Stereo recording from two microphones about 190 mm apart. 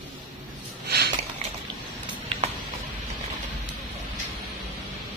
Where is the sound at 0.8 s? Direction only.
60° right (ahead or behind).